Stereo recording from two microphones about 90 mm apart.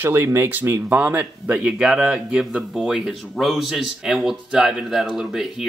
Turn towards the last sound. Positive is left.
turn(degrees=-5)  # may be behind; listen again after turning